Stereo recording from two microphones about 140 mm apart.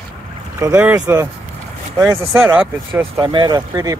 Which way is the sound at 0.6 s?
15° right (ahead or behind).